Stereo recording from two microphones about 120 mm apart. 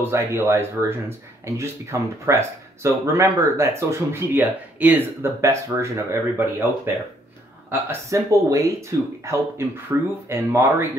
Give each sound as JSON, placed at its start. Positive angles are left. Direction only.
{"t": 0.0, "sound": "speech", "side_deg": -20}
{"t": 7.9, "sound": "speech", "side_deg": -25}